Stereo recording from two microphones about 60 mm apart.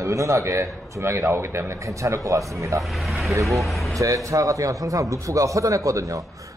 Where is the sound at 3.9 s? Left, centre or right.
Right.